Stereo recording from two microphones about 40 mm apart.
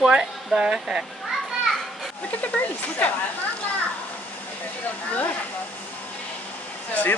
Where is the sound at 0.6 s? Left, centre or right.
Centre.